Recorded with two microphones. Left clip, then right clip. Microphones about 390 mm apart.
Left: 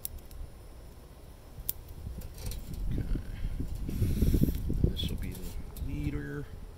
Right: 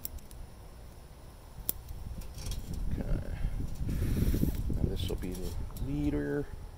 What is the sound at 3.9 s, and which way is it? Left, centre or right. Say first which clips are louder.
Vehicle: left 2 dB; centre.